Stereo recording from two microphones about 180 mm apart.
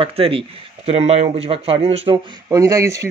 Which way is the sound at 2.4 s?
15° right (ahead or behind).